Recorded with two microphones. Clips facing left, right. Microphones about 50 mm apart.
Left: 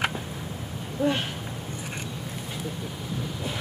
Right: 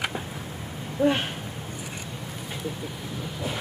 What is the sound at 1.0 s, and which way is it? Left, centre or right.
Speech, centre.